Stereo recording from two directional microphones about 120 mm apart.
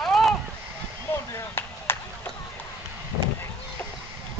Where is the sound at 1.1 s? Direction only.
20° left (ahead or behind).